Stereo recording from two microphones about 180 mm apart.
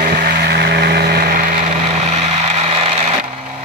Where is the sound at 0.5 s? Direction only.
65° right (ahead or behind).